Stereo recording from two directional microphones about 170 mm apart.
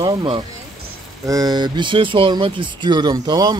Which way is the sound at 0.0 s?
30° right (ahead or behind).